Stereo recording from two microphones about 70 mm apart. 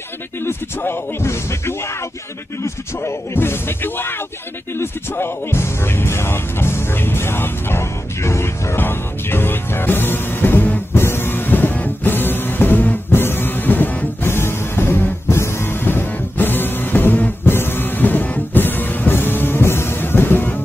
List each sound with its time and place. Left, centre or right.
0.4 s speech: left
4.7 s music: left